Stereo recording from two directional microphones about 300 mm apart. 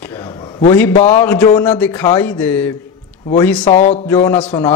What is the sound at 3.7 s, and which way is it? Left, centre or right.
Speech, left.